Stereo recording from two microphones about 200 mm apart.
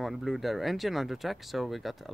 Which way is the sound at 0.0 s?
Centre (ahead or behind).